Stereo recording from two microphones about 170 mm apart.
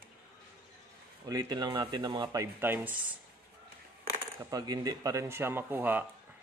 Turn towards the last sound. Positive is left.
turn(degrees=-10)  # may be behind; listen again after turning